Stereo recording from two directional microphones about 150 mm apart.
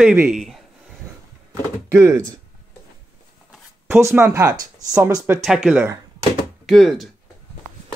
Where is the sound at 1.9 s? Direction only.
20° right (ahead or behind).